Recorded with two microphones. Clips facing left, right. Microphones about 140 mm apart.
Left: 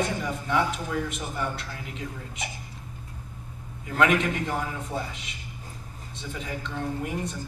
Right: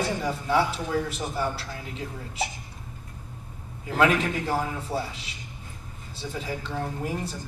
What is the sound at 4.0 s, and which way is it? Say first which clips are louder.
A man's voice: even; 35° right (ahead or behind).